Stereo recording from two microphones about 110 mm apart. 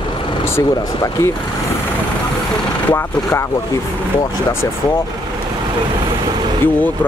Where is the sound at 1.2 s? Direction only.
20° left (ahead or behind).